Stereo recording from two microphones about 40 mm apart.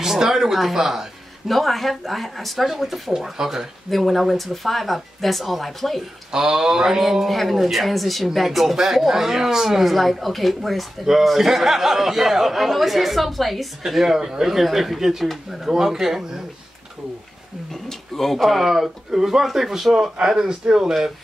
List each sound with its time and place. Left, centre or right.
0.0 s speech: centre
1.5 s speech: centre
3.9 s speech: centre
6.3 s speech: centre
7.0 s speech: centre
17.8 s speech: centre